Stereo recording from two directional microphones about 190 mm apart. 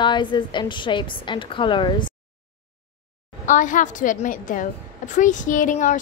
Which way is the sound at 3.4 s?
40° left (ahead or behind).